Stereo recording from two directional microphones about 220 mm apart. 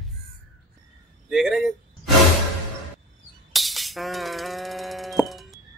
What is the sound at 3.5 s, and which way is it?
Music, centre (ahead or behind).